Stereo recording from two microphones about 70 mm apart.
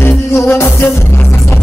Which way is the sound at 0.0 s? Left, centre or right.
Left.